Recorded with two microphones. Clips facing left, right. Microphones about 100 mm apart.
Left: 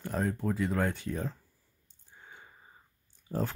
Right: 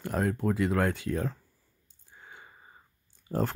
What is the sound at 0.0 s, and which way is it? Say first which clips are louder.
Speech: right 3 dB; 70° right (ahead or behind).